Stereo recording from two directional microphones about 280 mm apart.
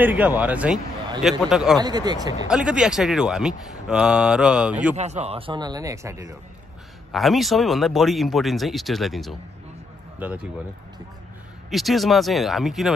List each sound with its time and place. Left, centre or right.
0.0 s speech: centre
1.8 s speech: centre
4.9 s speech: right
7.1 s speech: centre
11.7 s speech: centre